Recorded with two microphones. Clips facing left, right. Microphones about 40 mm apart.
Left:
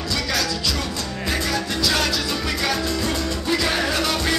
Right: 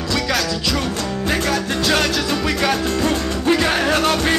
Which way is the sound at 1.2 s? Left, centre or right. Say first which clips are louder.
Right 3 dB; right.